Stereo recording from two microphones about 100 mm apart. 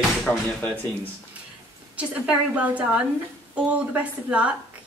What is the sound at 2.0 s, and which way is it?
Speech, 15° right (ahead or behind).